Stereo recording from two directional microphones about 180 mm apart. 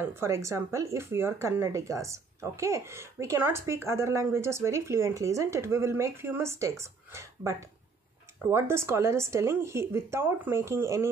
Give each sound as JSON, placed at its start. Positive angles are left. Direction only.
{"t": 0.0, "sound": "speech", "side_deg": -15}